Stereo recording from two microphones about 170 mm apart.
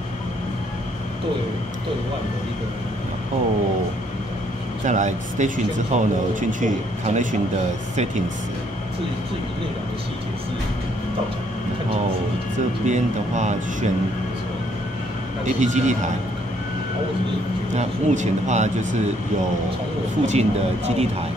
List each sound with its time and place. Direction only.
4.8 s speech: 45° right (ahead or behind)
12.8 s speech: 45° right (ahead or behind)
15.4 s speech: 45° right (ahead or behind)
17.7 s speech: 45° right (ahead or behind)
20.2 s speech: 40° right (ahead or behind)